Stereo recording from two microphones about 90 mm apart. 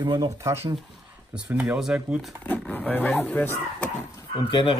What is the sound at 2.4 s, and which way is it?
Speech, 20° left (ahead or behind).